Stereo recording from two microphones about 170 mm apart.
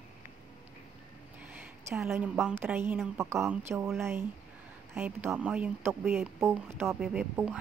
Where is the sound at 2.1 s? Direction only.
10° right (ahead or behind).